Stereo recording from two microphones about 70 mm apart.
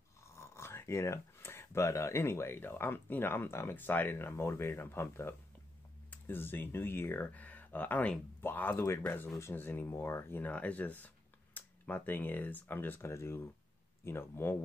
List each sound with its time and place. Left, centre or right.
0.4 s speech: left
10.4 s speech: left
13.0 s speech: left